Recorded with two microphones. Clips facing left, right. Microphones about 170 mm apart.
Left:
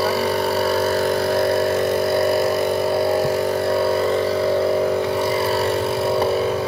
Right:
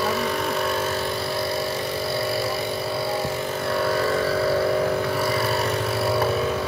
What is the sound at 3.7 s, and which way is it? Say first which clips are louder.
Vehicle: left 1 dB; 25° left (ahead or behind).